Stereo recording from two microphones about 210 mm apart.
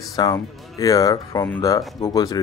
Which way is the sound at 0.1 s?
15° left (ahead or behind).